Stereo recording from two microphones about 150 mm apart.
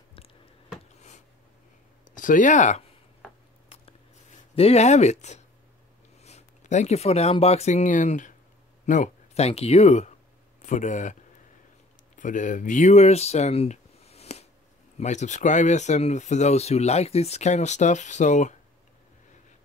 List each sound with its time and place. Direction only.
2.1 s speech: 60° left (ahead or behind)
4.6 s speech: 45° left (ahead or behind)
12.2 s speech: 60° left (ahead or behind)